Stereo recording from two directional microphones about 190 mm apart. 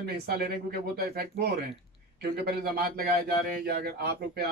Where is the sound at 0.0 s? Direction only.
55° right (ahead or behind).